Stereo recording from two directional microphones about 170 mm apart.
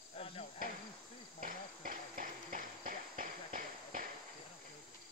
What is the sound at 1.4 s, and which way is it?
Clip-clop, 55° right (ahead or behind).